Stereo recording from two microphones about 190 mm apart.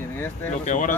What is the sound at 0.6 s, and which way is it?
Speech, 40° left (ahead or behind).